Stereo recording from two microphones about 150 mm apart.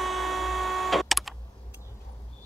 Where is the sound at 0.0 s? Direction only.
Centre (ahead or behind).